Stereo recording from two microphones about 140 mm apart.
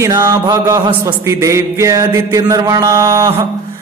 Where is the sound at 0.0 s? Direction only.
20° right (ahead or behind).